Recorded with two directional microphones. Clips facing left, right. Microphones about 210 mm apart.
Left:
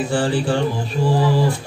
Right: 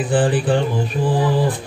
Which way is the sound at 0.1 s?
15° right (ahead or behind).